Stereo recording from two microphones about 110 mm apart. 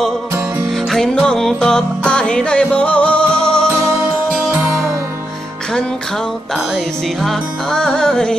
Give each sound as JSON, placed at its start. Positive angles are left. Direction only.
{"t": 0.7, "sound": "music", "side_deg": 0}
{"t": 6.5, "sound": "music", "side_deg": 0}